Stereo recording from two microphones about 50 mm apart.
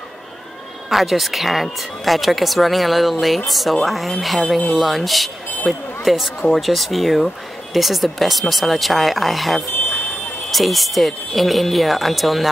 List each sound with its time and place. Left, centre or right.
0.8 s speech: centre
9.8 s a sound: left
10.5 s speech: centre